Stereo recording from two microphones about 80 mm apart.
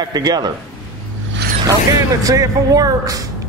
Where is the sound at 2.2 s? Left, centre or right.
Right.